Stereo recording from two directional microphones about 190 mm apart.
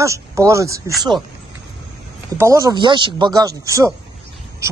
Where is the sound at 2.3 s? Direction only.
15° right (ahead or behind).